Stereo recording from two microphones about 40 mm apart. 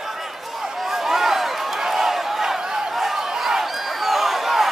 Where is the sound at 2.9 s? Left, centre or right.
Centre.